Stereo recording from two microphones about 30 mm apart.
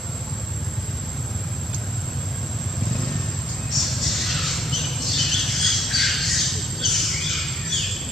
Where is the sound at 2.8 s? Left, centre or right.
Centre.